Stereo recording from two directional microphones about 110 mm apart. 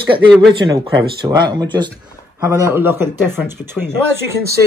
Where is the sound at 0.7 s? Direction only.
40° right (ahead or behind).